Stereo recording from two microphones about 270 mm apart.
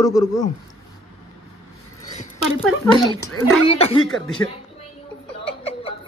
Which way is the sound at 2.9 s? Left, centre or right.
Centre.